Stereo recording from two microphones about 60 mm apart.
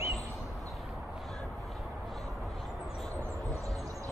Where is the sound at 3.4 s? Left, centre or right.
Right.